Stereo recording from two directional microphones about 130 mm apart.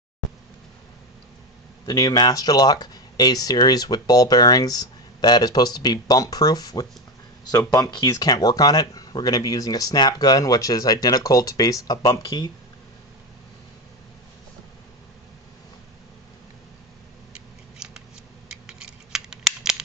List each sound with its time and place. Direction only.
1.9 s speech: 30° left (ahead or behind)
17.3 s scissors: 5° right (ahead or behind)